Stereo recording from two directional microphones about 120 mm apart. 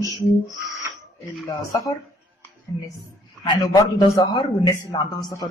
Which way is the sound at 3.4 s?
35° left (ahead or behind).